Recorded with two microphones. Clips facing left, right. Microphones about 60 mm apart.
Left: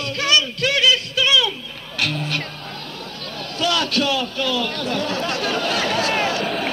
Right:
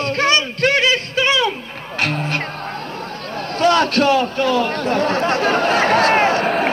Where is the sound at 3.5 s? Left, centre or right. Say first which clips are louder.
Right 6 dB; right.